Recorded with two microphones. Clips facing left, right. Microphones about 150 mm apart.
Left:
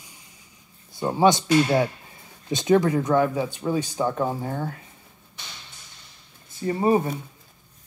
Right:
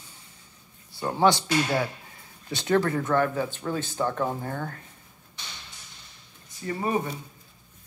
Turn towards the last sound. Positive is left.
turn(degrees=30)  # may be behind; listen again after turning